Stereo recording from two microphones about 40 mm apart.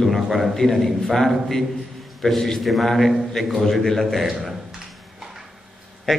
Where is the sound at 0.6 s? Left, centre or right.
Centre.